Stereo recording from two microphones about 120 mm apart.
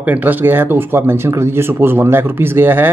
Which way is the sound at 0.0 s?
15° right (ahead or behind).